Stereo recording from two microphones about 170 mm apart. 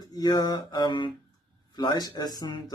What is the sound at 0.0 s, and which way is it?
Speech, 25° left (ahead or behind).